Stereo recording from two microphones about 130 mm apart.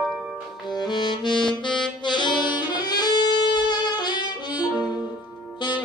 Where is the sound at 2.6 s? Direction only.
30° left (ahead or behind).